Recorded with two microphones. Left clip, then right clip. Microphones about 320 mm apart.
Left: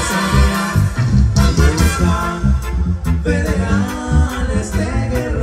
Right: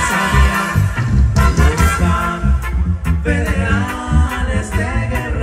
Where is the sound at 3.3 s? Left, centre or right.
Right.